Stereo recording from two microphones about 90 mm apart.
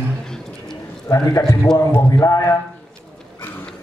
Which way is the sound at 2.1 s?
40° left (ahead or behind).